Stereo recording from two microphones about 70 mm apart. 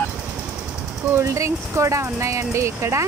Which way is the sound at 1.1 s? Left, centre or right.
Right.